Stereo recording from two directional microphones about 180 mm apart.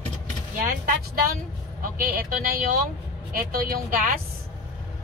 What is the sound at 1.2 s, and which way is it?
Speech, 50° right (ahead or behind).